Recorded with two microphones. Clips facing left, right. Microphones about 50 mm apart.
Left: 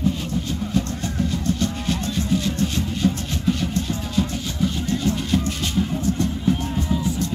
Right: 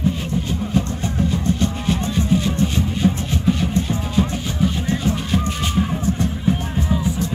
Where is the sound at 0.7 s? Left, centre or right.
Centre.